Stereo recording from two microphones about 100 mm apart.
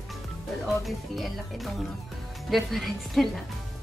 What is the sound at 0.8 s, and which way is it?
A woman's voice, centre (ahead or behind).